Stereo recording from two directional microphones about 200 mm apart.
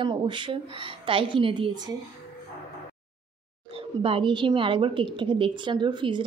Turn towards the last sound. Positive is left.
turn(degrees=-25)  # may be behind; listen again after turning